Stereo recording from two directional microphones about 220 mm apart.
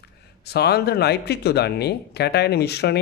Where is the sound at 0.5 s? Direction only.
45° left (ahead or behind).